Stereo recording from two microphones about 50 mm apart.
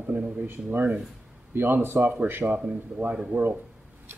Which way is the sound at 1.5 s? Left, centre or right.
Right.